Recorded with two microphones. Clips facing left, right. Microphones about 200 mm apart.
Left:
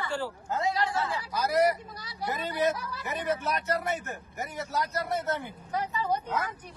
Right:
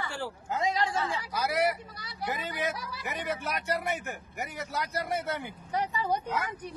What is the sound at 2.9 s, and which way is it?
Speech, 10° right (ahead or behind).